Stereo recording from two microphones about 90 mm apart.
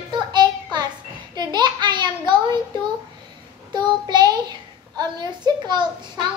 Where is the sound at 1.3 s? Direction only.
50° right (ahead or behind).